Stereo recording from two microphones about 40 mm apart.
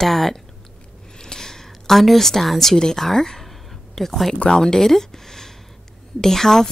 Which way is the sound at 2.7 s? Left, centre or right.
Centre.